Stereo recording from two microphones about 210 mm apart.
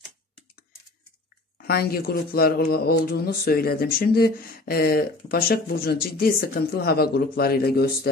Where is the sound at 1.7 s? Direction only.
45° left (ahead or behind).